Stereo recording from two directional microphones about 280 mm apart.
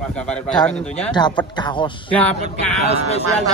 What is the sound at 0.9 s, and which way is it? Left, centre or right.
Speech, centre.